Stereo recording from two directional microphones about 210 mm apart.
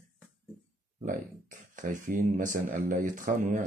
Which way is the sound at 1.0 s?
40° right (ahead or behind).